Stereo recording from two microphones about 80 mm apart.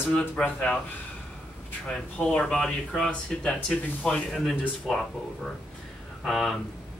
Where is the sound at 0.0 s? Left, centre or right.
Left.